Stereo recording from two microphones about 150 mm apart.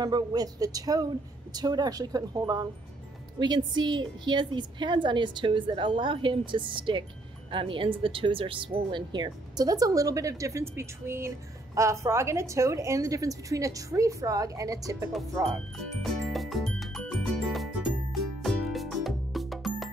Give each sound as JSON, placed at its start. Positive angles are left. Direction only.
{"t": 0.0, "sound": "a woman's voice", "side_deg": -25}
{"t": 16.0, "sound": "music", "side_deg": 0}